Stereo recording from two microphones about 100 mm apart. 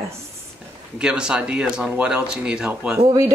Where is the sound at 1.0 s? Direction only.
10° right (ahead or behind).